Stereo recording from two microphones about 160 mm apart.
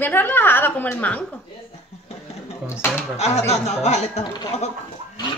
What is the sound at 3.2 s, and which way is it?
Speech, 45° left (ahead or behind).